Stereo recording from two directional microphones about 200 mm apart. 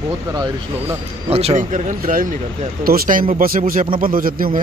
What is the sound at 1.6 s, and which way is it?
Speech, 40° right (ahead or behind).